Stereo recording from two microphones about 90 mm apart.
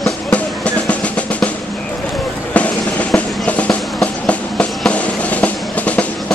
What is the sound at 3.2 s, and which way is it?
Train, 15° left (ahead or behind).